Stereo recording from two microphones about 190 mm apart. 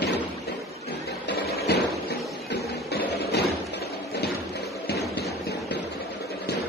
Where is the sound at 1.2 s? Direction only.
60° left (ahead or behind).